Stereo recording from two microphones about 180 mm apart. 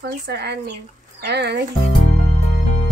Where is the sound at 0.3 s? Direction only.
65° right (ahead or behind).